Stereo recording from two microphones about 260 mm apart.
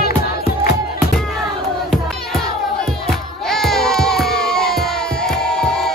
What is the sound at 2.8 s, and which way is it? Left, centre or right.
Crowd, centre.